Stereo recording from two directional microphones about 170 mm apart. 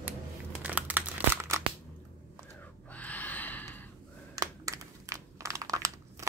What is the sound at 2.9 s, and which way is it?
Gasp, 10° left (ahead or behind).